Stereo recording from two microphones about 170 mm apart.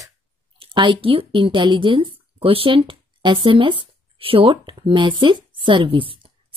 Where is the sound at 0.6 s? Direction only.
30° right (ahead or behind).